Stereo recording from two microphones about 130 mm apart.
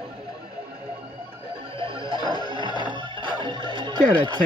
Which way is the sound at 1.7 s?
45° right (ahead or behind).